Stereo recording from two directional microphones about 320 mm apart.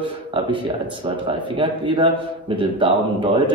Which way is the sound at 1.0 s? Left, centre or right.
Centre.